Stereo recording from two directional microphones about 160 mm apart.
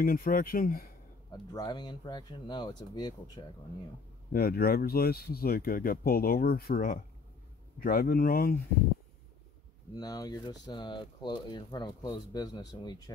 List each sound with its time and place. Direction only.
0.0 s speech: 65° left (ahead or behind)
1.3 s speech: 25° left (ahead or behind)
4.3 s speech: 70° left (ahead or behind)
9.9 s speech: 25° left (ahead or behind)